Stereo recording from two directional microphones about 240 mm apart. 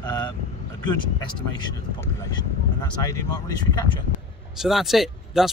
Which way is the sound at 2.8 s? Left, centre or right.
Centre.